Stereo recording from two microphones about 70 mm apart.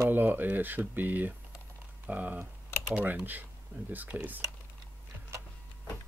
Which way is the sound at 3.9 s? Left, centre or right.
Right.